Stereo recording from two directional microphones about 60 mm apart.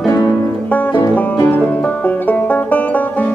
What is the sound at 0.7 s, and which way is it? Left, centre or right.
Music, left.